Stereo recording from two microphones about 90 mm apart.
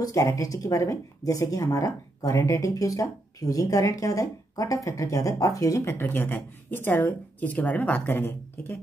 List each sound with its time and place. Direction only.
0.0 s speech: 40° left (ahead or behind)